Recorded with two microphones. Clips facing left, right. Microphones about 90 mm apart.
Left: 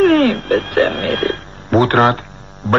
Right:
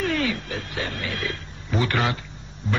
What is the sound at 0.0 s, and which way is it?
Speech, 55° left (ahead or behind).